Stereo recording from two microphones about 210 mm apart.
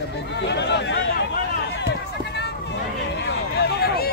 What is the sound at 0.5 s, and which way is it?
Speech, 55° left (ahead or behind).